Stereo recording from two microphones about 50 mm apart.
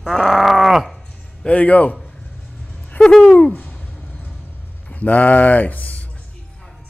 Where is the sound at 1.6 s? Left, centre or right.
Left.